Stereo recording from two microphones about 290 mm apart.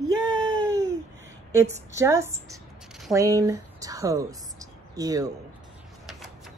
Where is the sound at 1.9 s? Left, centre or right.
Centre.